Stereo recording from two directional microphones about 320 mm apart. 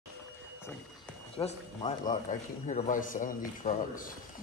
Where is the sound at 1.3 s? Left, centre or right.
Centre.